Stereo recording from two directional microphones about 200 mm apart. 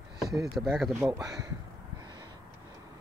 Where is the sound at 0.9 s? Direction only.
15° right (ahead or behind).